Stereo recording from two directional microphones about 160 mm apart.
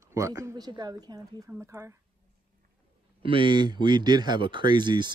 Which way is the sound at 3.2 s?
30° right (ahead or behind).